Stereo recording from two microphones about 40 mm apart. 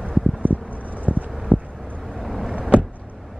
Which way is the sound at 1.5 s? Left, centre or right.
Right.